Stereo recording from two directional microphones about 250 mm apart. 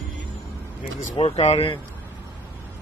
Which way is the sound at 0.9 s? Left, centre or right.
Left.